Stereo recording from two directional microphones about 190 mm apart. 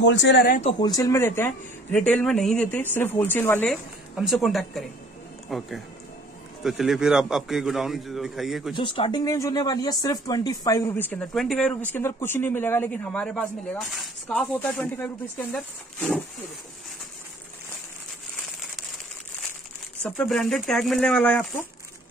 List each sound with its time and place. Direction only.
0.0 s speech: 70° left (ahead or behind)
0.6 s speech: 25° left (ahead or behind); by 3.7 s 10° left (ahead or behind)
4.2 s a man's voice: centre (ahead or behind)
8.7 s speech: 25° left (ahead or behind); by 11.7 s centre (ahead or behind)
11.9 s speech: 10° left (ahead or behind)
20.0 s a man's voice: 5° left (ahead or behind)